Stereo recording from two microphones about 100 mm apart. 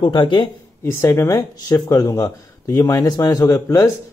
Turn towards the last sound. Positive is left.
turn(degrees=35)  # may be behind; listen again after turning